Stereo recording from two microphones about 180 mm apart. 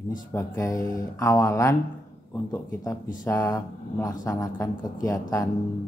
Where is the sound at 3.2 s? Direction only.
15° left (ahead or behind).